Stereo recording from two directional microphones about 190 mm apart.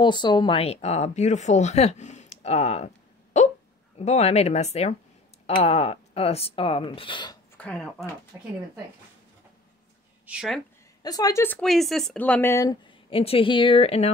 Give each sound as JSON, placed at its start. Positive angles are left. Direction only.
{"t": 0.0, "sound": "speech", "side_deg": 25}
{"t": 3.3, "sound": "hiccup", "side_deg": 40}
{"t": 4.0, "sound": "speech", "side_deg": 35}
{"t": 7.5, "sound": "speech", "side_deg": 5}
{"t": 10.2, "sound": "speech", "side_deg": -5}
{"t": 11.0, "sound": "speech", "side_deg": 20}